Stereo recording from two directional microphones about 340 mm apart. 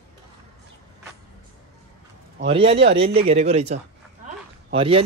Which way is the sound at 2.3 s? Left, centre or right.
Centre.